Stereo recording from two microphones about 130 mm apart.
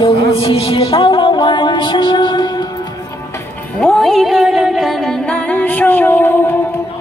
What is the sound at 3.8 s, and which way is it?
Music, centre (ahead or behind).